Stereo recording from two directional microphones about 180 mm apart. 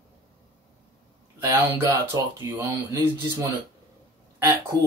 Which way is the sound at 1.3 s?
15° right (ahead or behind).